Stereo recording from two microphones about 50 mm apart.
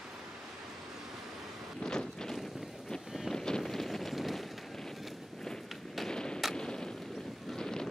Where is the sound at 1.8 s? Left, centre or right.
Centre.